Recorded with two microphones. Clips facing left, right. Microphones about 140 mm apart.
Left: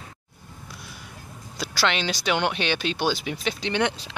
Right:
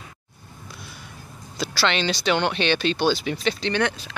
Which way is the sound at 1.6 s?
10° left (ahead or behind).